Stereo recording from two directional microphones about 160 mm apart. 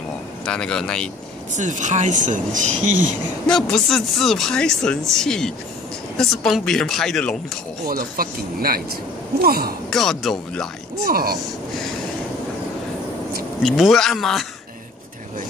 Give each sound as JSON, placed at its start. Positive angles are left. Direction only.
{"t": 0.5, "sound": "speech", "side_deg": 5}
{"t": 1.5, "sound": "speech", "side_deg": -50}
{"t": 3.4, "sound": "speech", "side_deg": 5}
{"t": 7.9, "sound": "speech", "side_deg": -65}
{"t": 9.8, "sound": "speech", "side_deg": 0}
{"t": 11.1, "sound": "speech", "side_deg": -70}
{"t": 13.6, "sound": "speech", "side_deg": 0}